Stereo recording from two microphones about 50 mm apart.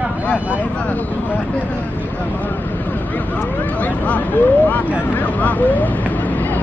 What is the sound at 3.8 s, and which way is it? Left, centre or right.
Speech, left.